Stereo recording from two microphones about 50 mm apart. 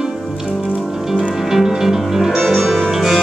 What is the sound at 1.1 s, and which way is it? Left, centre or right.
Music, centre.